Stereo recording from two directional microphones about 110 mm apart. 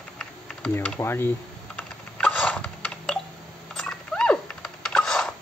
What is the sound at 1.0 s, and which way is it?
Computer keyboard, 20° left (ahead or behind).